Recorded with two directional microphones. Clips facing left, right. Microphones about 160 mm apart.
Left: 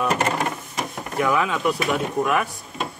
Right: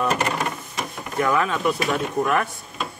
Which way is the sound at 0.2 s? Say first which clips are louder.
Left 1 dB; 25° left (ahead or behind).